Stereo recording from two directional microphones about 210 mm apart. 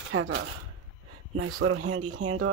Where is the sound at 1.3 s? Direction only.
90° right.